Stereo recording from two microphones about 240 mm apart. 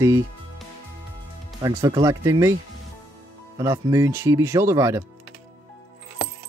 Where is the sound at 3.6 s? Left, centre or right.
Centre.